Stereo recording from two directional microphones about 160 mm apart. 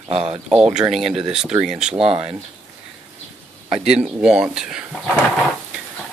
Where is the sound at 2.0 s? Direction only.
35° right (ahead or behind).